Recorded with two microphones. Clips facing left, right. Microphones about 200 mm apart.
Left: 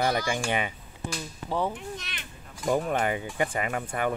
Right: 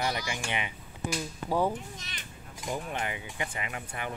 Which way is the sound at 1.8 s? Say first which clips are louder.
Left 5 dB; 65° left (ahead or behind).